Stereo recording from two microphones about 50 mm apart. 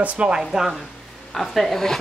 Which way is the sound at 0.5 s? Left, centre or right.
Centre.